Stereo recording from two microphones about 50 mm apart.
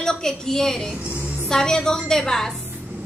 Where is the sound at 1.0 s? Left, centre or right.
Right.